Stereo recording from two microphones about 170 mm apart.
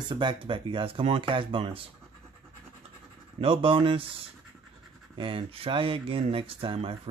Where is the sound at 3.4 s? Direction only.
30° right (ahead or behind).